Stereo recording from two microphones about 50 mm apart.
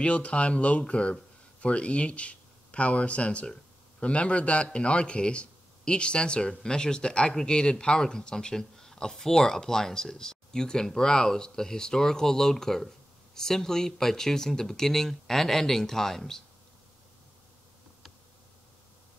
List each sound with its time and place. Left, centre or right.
0.0 s speech: left; by 16.4 s centre